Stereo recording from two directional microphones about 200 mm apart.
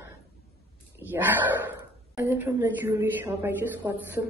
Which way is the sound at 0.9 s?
10° right (ahead or behind).